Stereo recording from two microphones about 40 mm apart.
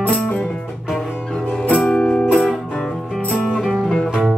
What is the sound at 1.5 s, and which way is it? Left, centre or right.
Music, left.